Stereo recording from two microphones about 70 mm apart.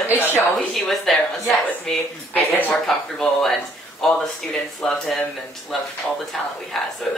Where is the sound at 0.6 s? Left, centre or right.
Centre.